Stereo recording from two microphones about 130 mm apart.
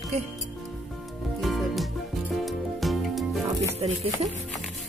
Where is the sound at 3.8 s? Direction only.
55° right (ahead or behind).